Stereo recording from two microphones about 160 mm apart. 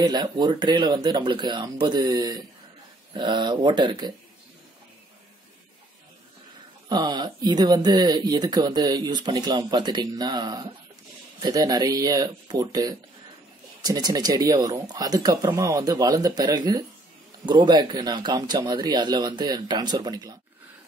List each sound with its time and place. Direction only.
0.0 s speech: 25° right (ahead or behind)
6.9 s speech: 25° right (ahead or behind)